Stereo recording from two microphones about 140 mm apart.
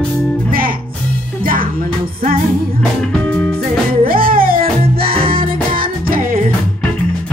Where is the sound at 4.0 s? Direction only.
90° right.